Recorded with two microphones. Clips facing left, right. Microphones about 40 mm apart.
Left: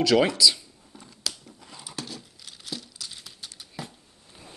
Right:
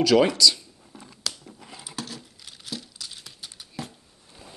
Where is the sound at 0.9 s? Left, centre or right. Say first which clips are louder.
Right 2 dB; centre.